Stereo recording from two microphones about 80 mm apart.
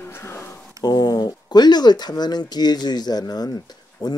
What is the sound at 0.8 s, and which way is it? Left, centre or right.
Speech, left.